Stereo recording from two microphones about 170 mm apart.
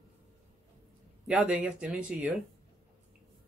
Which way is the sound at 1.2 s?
5° right (ahead or behind).